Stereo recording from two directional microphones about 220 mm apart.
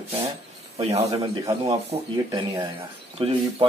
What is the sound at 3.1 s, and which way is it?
Speech, 25° right (ahead or behind).